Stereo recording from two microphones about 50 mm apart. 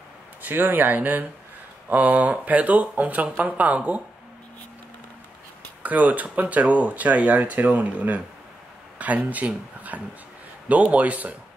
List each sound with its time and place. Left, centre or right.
0.4 s speech: right
5.8 s speech: right